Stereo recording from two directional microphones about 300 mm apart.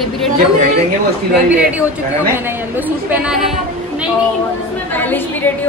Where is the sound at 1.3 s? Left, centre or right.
Centre.